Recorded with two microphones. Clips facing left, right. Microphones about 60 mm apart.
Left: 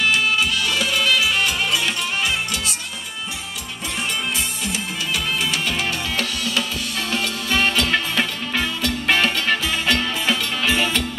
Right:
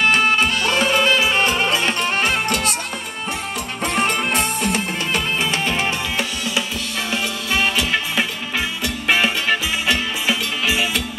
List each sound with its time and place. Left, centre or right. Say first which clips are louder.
0.0 s music: right 3 dB; right
3.8 s music: right 6 dB; right
6.1 s music: right 1 dB; centre